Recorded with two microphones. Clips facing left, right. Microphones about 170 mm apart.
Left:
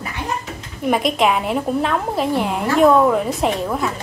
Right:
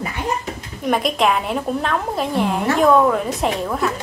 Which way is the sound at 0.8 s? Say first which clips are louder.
Left 1 dB; centre (ahead or behind).